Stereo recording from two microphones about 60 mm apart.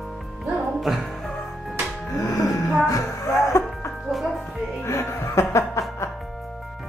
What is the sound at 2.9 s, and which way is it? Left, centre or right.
Music, left.